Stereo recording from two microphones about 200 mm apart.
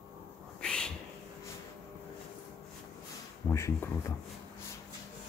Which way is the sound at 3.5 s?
15° left (ahead or behind).